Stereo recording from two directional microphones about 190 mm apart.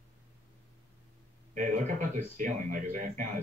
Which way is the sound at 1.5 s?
40° right (ahead or behind).